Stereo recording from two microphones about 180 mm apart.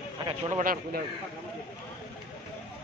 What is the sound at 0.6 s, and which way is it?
Speech, 50° right (ahead or behind).